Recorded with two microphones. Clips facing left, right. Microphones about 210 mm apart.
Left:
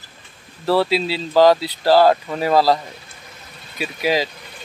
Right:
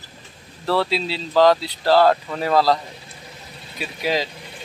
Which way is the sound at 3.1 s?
30° right (ahead or behind).